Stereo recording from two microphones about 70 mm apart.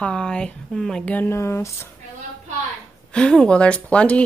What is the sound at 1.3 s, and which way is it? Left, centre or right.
Speech, left.